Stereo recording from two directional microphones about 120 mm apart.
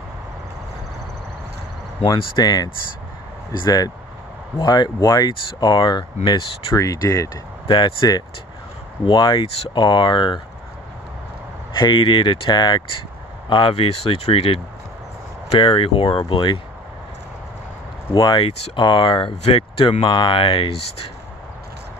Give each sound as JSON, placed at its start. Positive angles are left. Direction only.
{"t": 2.0, "sound": "speech", "side_deg": 35}
{"t": 6.7, "sound": "speech", "side_deg": 30}
{"t": 7.6, "sound": "speech", "side_deg": 45}
{"t": 11.8, "sound": "speech", "side_deg": 45}
{"t": 15.6, "sound": "speech", "side_deg": 45}
{"t": 18.1, "sound": "speech", "side_deg": 40}